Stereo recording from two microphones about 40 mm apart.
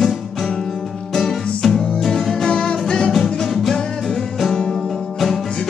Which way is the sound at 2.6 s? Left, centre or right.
Left.